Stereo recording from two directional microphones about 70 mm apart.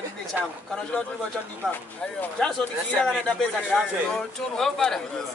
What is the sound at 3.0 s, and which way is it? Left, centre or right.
A man's voice, centre.